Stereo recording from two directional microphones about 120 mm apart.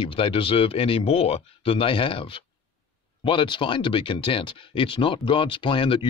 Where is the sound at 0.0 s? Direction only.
45° left (ahead or behind).